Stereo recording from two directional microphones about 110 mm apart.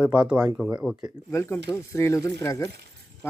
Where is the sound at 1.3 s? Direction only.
25° left (ahead or behind).